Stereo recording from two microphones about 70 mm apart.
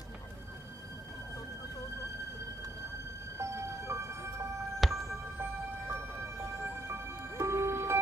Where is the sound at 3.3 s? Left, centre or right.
Right.